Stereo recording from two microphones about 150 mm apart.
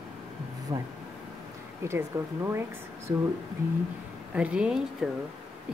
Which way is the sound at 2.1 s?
15° right (ahead or behind).